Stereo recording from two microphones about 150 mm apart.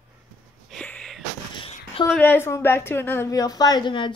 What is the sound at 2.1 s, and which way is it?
A woman's voice, 15° left (ahead or behind).